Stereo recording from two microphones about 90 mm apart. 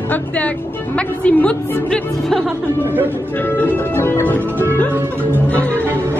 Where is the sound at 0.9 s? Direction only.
15° left (ahead or behind).